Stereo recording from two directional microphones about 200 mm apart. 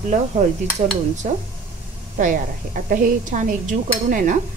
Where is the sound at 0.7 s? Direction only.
35° right (ahead or behind).